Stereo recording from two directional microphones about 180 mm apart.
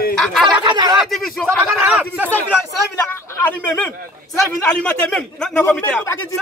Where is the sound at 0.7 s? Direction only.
25° right (ahead or behind).